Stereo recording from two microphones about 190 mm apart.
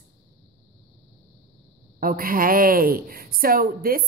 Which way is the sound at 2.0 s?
50° right (ahead or behind).